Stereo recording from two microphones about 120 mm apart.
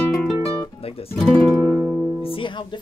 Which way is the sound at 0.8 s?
55° left (ahead or behind).